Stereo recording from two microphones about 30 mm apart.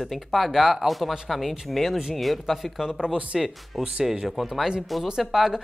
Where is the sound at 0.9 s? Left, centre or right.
Centre.